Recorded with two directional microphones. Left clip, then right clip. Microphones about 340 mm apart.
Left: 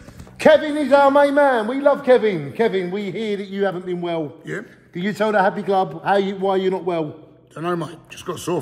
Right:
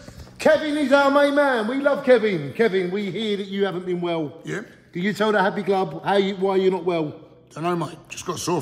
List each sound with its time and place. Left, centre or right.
0.7 s a man's voice: centre